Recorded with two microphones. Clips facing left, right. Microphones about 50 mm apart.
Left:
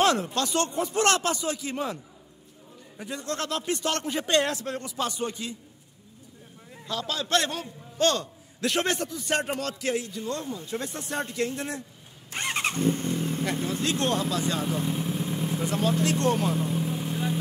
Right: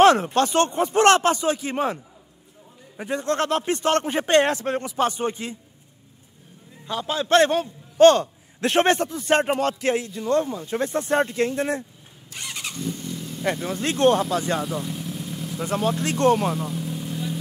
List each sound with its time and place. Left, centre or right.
0.0 s a man's voice: right
3.0 s a man's voice: right
6.9 s a man's voice: right
12.3 s vehicle: left
13.8 s a man's voice: right
14.6 s speech: centre
15.0 s vehicle: left
15.7 s a man's voice: right
16.5 s vehicle: left